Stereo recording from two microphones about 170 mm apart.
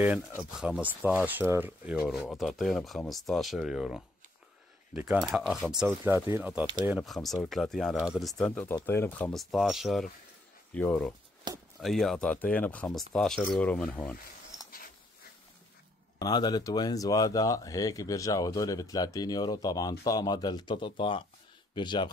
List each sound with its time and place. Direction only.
0.4 s speech: 5° right (ahead or behind)
6.9 s speech: centre (ahead or behind)
11.5 s speech: 25° right (ahead or behind)
11.8 s speech: centre (ahead or behind)
16.2 s speech: 25° left (ahead or behind)